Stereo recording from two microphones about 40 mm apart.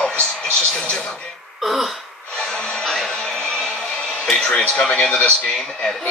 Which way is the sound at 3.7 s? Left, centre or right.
Left.